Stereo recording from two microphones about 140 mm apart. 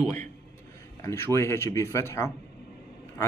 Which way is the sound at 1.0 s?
20° left (ahead or behind).